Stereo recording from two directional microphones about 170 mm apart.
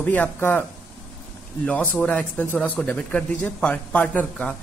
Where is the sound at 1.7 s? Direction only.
10° left (ahead or behind).